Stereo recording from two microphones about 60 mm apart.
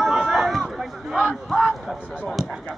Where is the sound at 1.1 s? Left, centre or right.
Centre.